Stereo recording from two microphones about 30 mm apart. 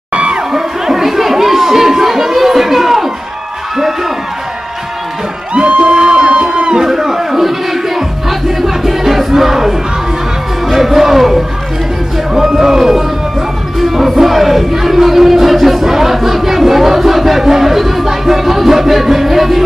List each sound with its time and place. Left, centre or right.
0.1 s crowd: right
0.5 s chatter: centre
5.8 s music: right
6.1 s a sound: right
6.8 s music: centre
10.8 s music: centre